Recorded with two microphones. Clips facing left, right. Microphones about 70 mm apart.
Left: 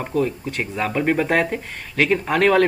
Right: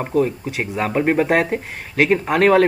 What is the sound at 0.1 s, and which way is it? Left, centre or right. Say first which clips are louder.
Speech: right 3 dB; centre.